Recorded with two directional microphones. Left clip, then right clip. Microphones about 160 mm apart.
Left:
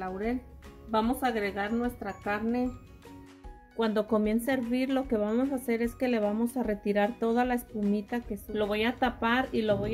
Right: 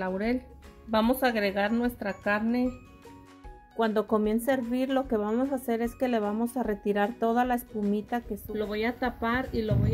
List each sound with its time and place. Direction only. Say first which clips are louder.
0.0 s a woman's voice: right 3 dB; 55° right (ahead or behind)
3.7 s speech: right 2 dB; centre (ahead or behind)